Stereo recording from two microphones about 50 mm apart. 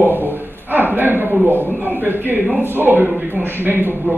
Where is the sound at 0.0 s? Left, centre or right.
Right.